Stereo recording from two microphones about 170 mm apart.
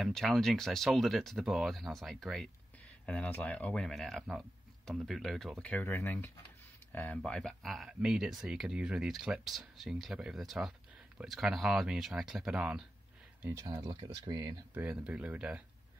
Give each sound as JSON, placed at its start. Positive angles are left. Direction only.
{"t": 0.0, "sound": "speech", "side_deg": 0}
{"t": 13.4, "sound": "speech", "side_deg": -15}
{"t": 14.7, "sound": "speech", "side_deg": -10}